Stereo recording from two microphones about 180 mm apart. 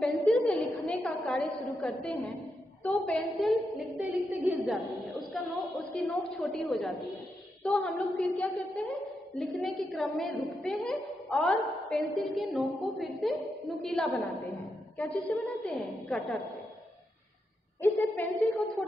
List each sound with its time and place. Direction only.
0.5 s a woman's voice: 10° left (ahead or behind)
4.4 s a woman's voice: 15° left (ahead or behind)
4.6 s a woman's voice: centre (ahead or behind)
15.1 s a woman's voice: 15° left (ahead or behind)
15.6 s a woman's voice: centre (ahead or behind)
17.8 s a woman's voice: 15° left (ahead or behind)